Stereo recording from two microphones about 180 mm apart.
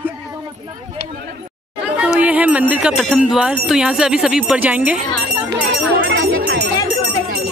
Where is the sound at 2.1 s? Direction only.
10° right (ahead or behind).